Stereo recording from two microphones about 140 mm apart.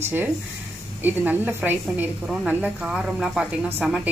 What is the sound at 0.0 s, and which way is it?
A woman's voice, 15° right (ahead or behind).